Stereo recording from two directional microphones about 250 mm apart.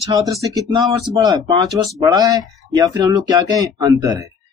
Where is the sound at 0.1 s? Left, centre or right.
Centre.